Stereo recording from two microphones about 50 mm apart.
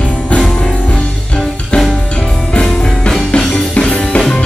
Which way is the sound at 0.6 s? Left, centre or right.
Left.